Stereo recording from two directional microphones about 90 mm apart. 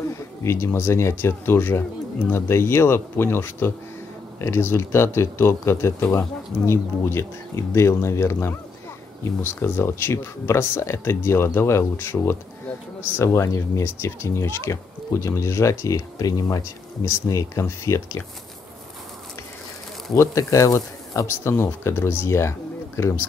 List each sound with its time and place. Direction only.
0.4 s speech: 30° left (ahead or behind)
20.2 s speech: 35° left (ahead or behind)